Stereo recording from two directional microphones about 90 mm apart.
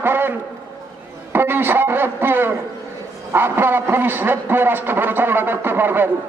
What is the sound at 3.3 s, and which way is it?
A man's voice, 25° right (ahead or behind).